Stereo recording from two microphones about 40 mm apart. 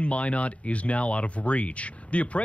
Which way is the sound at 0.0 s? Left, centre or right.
Left.